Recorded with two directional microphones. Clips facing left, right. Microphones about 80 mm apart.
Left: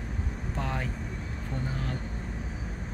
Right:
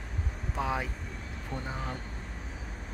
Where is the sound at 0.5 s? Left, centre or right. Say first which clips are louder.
Right 2 dB; centre.